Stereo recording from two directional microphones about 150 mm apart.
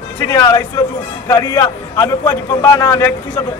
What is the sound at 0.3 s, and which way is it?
A man's voice, 20° left (ahead or behind).